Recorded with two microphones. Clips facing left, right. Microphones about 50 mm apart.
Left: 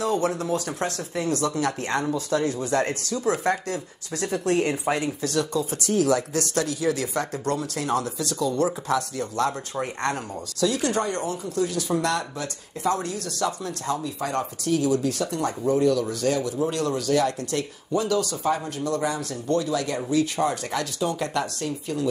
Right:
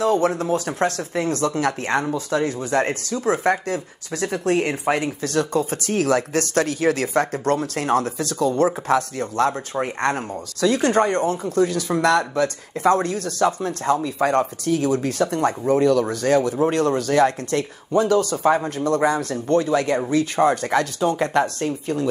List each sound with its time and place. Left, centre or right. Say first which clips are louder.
0.0 s speech: right 5 dB; right
14.0 s speech: right 8 dB; right
14.4 s speech: right 3 dB; right